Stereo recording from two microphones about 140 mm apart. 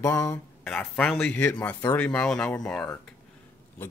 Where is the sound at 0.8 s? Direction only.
5° left (ahead or behind).